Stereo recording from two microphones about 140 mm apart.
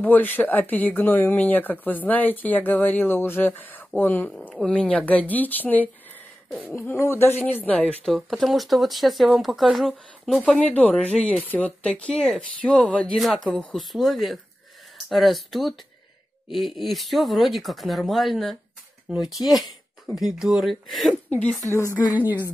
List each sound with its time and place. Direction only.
0.0 s speech: 10° left (ahead or behind)
21.3 s a woman's voice: 10° left (ahead or behind)
22.1 s a woman's voice: 10° right (ahead or behind)